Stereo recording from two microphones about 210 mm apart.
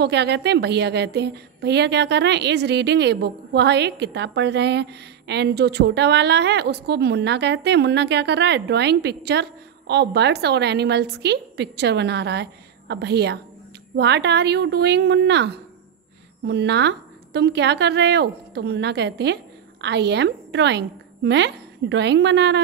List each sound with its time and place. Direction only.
0.0 s a woman's voice: 55° right (ahead or behind)